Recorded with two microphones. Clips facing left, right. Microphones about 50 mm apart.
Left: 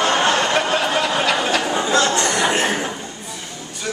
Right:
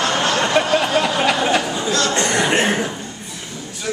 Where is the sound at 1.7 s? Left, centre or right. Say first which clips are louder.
Left 2 dB; left.